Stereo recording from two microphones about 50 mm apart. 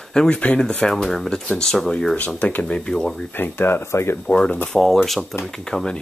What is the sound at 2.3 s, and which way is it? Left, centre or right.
Speech, left.